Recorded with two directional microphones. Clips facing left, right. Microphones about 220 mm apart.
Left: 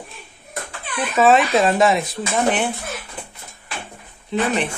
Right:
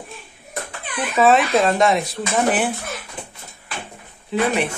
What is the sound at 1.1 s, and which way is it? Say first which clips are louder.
Speech: even; centre (ahead or behind).